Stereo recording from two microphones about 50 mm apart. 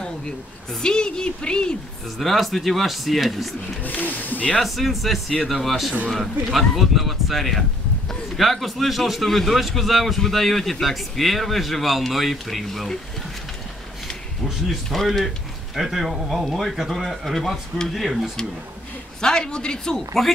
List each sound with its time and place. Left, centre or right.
0.8 s speech: centre
2.1 s a man's voice: centre
3.8 s speech: left
4.6 s a man's voice: centre
14.7 s a man's voice: centre
19.2 s speech: centre